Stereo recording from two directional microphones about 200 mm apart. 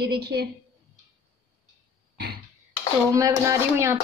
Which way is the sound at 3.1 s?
15° right (ahead or behind).